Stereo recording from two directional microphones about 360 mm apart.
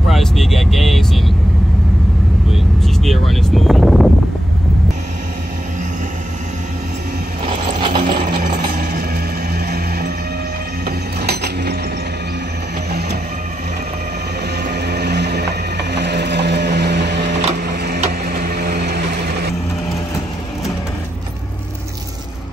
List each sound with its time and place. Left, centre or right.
0.1 s vehicle: centre
2.5 s vehicle: centre
7.4 s mechanisms: centre
8.4 s a sound: right
9.5 s music: right
10.9 s mechanisms: right
14.6 s vehicle: right
17.4 s a sound: right